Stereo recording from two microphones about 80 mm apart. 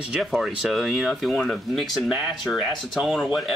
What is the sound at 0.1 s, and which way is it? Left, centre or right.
Speech, centre.